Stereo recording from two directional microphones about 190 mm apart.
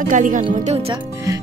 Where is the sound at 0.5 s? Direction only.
35° right (ahead or behind).